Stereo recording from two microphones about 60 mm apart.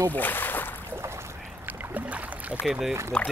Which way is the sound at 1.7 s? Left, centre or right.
Right.